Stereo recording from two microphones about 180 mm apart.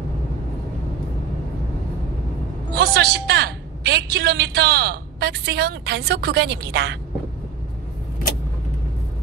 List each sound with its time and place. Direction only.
2.7 s a woman's voice: 60° right (ahead or behind)